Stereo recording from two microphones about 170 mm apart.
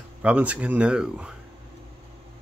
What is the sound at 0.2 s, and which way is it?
Speech, 10° right (ahead or behind).